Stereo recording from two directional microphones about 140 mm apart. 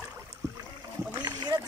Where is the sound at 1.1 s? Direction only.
30° right (ahead or behind).